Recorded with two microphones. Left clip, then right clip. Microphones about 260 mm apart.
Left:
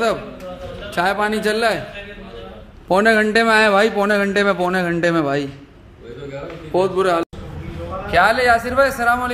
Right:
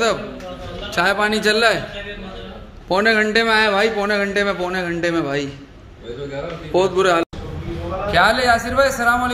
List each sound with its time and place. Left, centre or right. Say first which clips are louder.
0.8 s a man's voice: right 1 dB; centre
2.9 s a man's voice: left 1 dB; left
6.7 s a man's voice: right 1 dB; centre